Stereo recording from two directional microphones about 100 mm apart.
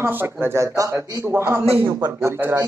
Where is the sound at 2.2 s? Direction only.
25° right (ahead or behind).